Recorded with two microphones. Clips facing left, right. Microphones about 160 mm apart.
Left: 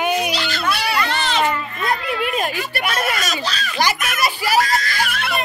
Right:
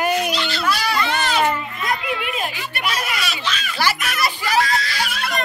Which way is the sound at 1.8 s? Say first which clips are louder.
Left 4 dB; 40° left (ahead or behind).